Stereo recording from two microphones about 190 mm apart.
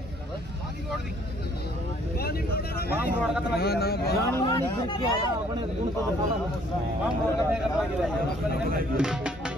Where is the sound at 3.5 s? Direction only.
55° left (ahead or behind).